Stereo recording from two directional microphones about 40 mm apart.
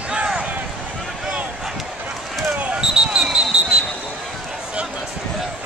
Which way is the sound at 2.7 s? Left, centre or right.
Right.